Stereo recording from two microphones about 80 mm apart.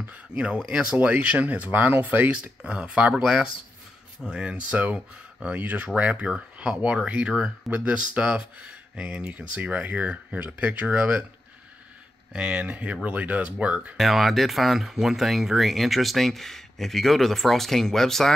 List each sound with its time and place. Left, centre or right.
0.0 s speech: centre
12.3 s speech: centre
13.9 s speech: centre